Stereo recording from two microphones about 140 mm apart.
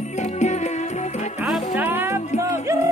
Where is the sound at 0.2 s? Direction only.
55° left (ahead or behind).